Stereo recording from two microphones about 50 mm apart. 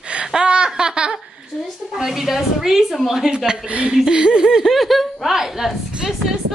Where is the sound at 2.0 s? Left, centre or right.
Centre.